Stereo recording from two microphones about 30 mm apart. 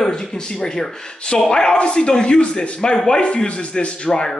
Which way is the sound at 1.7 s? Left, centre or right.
Left.